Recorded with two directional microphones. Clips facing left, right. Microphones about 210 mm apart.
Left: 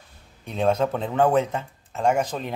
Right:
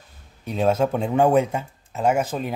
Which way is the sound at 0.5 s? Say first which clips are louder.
Right 2 dB; 5° right (ahead or behind).